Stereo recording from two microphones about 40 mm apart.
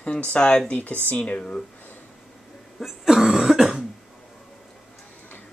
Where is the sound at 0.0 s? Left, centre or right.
Left.